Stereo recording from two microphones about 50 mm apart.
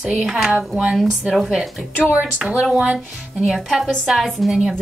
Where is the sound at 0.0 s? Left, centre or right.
Centre.